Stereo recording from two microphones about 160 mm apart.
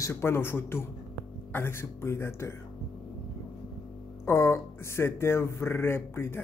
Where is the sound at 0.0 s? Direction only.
15° left (ahead or behind).